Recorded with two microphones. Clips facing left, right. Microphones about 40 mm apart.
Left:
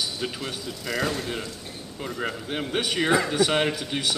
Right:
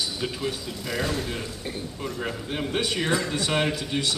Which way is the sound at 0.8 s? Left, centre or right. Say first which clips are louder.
Left 1 dB; centre.